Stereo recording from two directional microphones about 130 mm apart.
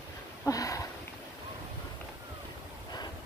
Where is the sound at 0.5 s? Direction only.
25° left (ahead or behind).